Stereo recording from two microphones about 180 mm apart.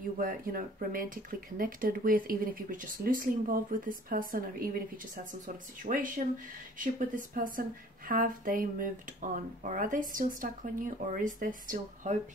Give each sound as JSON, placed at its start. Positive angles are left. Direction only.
{"t": 0.2, "sound": "speech", "side_deg": -50}